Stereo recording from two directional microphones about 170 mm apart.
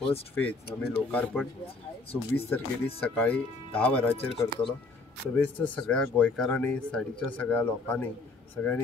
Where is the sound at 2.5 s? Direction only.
10° left (ahead or behind).